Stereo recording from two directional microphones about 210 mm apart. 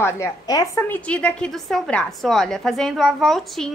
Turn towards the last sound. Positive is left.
turn(degrees=0)  # may be behind; listen again after turning